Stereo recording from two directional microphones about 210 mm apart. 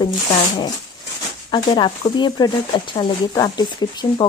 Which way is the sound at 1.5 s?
20° left (ahead or behind).